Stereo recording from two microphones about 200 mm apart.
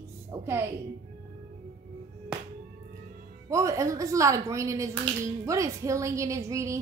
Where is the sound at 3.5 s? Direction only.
15° right (ahead or behind).